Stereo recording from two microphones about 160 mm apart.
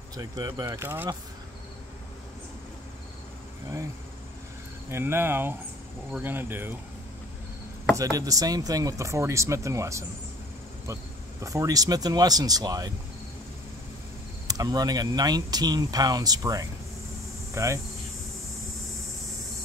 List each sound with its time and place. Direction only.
0.2 s speech: 20° right (ahead or behind)
4.9 s speech: 15° right (ahead or behind)
7.9 s speech: 20° right (ahead or behind)
11.4 s speech: 20° right (ahead or behind)
14.5 s speech: 25° right (ahead or behind)